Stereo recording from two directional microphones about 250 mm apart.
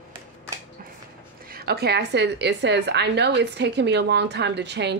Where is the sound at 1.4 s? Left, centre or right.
Right.